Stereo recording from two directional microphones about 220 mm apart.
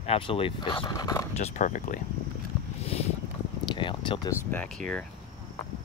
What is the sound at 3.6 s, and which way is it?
Speech, 20° left (ahead or behind).